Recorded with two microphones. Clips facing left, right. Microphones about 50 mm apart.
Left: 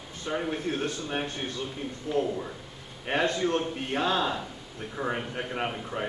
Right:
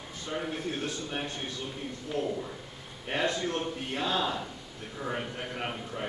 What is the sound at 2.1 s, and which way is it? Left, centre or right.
Speech, centre.